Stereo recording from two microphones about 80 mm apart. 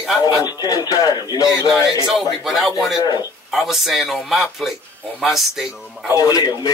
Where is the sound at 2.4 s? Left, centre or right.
Centre.